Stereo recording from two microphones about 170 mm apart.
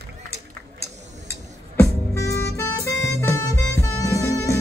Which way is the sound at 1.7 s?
15° left (ahead or behind).